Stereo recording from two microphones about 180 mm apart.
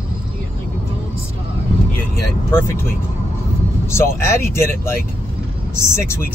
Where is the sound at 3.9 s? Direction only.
15° left (ahead or behind).